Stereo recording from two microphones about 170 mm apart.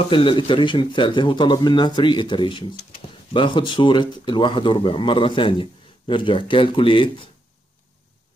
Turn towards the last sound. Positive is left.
turn(degrees=30)  # may be behind; listen again after turning